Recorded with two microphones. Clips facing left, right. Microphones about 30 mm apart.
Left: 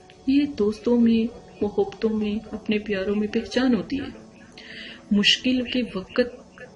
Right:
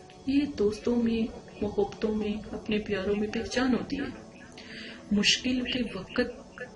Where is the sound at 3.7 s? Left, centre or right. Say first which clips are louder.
Left 5 dB; centre.